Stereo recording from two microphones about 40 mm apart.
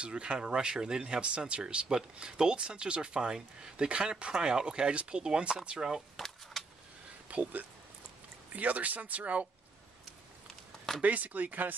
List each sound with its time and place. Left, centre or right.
0.0 s speech: right
5.8 s speech: centre
6.1 s chop: centre
7.2 s speech: right
11.0 s speech: right